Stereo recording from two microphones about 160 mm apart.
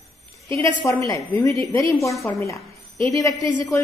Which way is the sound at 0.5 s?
20° left (ahead or behind).